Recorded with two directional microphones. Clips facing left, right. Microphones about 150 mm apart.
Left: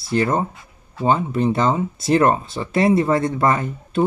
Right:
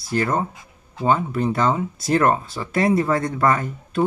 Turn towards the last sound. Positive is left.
turn(degrees=25)  # may be behind; listen again after turning